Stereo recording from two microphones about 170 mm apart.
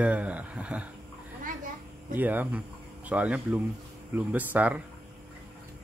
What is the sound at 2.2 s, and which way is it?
Speech, 10° right (ahead or behind).